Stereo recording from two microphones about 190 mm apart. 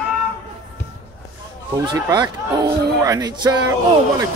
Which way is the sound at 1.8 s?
20° right (ahead or behind).